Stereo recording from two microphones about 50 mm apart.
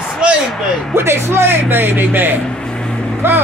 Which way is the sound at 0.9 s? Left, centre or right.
Right.